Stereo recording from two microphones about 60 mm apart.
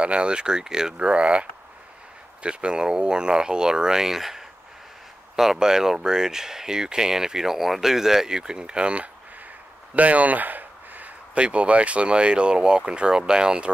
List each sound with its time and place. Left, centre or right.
0.0 s speech: centre